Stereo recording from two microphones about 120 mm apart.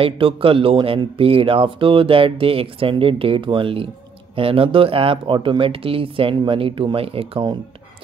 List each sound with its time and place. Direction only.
0.0 s speech: 50° right (ahead or behind)